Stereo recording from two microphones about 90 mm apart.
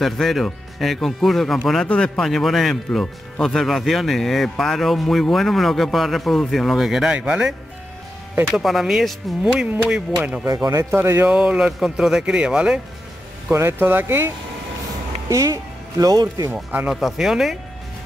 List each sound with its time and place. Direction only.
0.0 s speech: centre (ahead or behind)
8.5 s speech: centre (ahead or behind)
10.4 s speech: 40° right (ahead or behind)
10.9 s speech: 25° right (ahead or behind)
11.2 s speech: 10° right (ahead or behind)
13.5 s speech: 25° right (ahead or behind)
15.2 s speech: 40° right (ahead or behind)
16.5 s speech: 10° right (ahead or behind)